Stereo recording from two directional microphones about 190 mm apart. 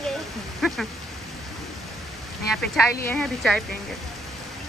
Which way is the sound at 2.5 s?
Centre (ahead or behind).